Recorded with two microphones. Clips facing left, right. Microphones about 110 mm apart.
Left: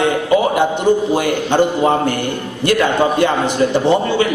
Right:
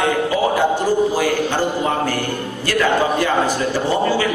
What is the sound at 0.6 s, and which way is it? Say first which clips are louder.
A man's voice: left 2 dB; 20° left (ahead or behind).